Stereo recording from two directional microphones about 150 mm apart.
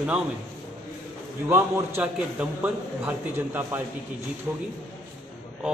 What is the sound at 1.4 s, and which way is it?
A man's voice, 15° right (ahead or behind).